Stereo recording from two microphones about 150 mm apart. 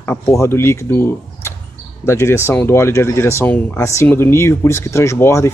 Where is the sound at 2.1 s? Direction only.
20° left (ahead or behind).